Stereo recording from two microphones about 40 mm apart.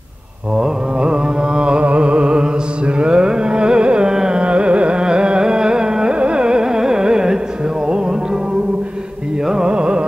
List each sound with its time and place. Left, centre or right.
0.6 s music: right
4.4 s carnatic music: right
7.8 s music: centre
9.7 s carnatic music: right